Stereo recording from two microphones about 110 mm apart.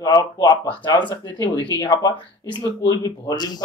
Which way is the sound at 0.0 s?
35° left (ahead or behind).